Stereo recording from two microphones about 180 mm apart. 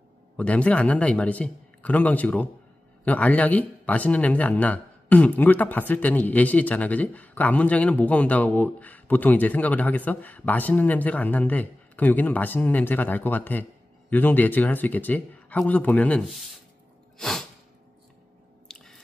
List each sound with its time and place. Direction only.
0.4 s speech: 5° left (ahead or behind)
17.2 s a sound: centre (ahead or behind)
18.7 s squish: 5° left (ahead or behind)